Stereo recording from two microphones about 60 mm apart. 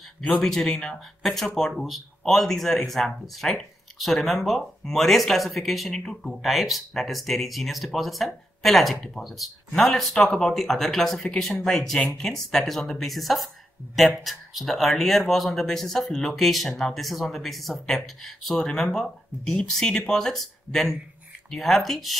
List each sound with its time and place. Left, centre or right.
0.3 s speech: centre